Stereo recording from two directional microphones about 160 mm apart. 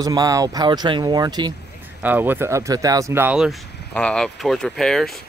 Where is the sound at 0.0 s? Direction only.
25° right (ahead or behind).